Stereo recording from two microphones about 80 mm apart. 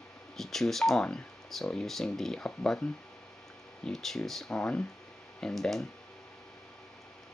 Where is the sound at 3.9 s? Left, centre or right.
Centre.